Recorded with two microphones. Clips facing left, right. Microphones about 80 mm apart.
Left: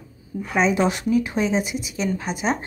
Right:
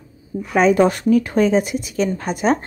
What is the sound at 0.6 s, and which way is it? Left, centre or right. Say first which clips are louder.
Speech: right 6 dB; right.